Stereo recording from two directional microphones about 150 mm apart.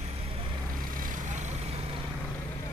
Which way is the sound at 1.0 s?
55° right (ahead or behind).